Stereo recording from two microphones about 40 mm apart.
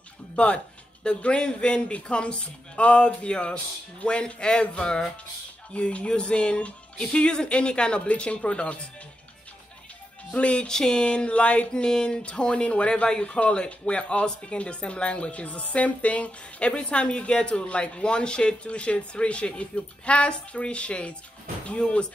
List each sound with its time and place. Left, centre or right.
1.0 s a woman's voice: left
10.3 s music: left
10.7 s a woman's voice: centre
11.7 s a woman's voice: centre